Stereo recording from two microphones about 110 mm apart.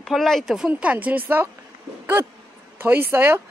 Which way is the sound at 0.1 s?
5° left (ahead or behind).